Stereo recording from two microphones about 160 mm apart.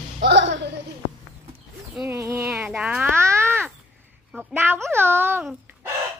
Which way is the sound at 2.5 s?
5° right (ahead or behind).